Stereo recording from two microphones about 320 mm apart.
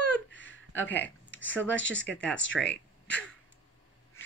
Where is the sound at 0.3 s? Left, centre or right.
Left.